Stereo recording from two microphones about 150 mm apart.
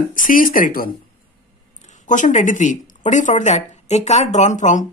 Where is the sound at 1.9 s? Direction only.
55° left (ahead or behind).